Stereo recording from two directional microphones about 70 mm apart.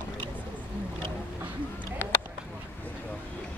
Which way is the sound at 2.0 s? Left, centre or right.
Left.